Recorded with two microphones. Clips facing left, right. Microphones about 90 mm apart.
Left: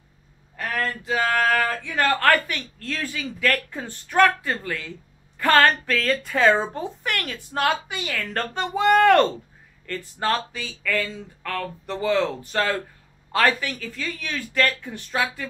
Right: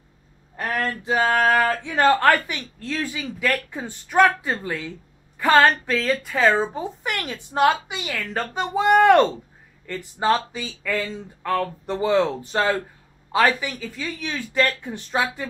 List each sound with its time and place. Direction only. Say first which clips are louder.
0.6 s a woman's voice: right 2 dB; 20° right (ahead or behind)